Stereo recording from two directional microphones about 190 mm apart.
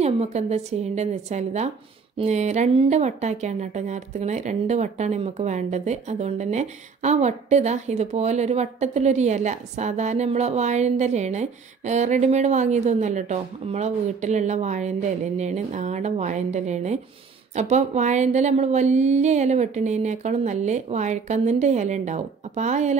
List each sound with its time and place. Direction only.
0.0 s speech: 35° right (ahead or behind)